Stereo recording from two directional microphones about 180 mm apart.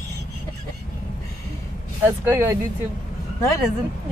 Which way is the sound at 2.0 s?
10° right (ahead or behind).